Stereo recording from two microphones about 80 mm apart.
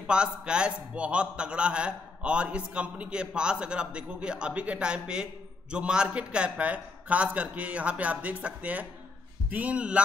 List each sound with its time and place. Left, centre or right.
0.0 s a man's voice: centre